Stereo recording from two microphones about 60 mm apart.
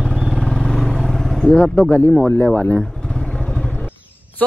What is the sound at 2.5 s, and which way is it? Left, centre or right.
Speech, centre.